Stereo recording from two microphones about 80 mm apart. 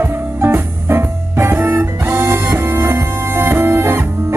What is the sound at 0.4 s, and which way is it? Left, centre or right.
Music, right.